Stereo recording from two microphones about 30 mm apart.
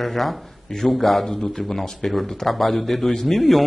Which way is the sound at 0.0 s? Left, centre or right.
Centre.